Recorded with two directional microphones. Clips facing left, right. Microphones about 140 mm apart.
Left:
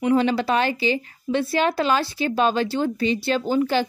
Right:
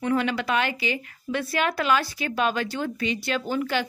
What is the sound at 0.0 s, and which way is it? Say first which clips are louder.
A woman's voice: left 5 dB; 30° left (ahead or behind).